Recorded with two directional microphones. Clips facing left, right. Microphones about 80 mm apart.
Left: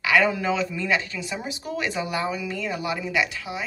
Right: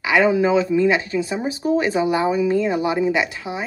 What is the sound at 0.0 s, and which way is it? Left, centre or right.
Speech, right.